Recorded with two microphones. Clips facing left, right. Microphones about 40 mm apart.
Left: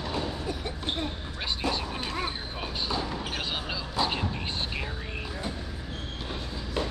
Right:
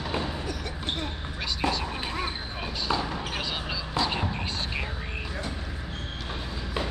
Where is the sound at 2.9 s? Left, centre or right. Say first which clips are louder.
Right 4 dB; right.